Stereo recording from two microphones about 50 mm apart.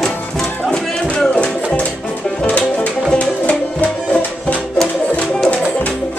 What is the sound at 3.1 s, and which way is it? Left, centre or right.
Music, left.